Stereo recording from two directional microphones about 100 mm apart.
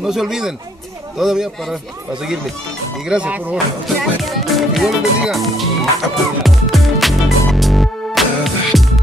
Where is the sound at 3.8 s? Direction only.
Centre (ahead or behind).